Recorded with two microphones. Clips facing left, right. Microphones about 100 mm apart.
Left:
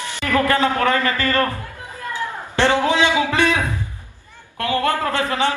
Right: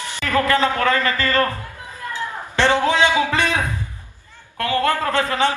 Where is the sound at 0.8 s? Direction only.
25° left (ahead or behind).